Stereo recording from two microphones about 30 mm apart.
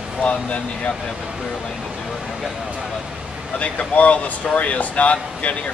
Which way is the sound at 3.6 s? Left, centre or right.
Left.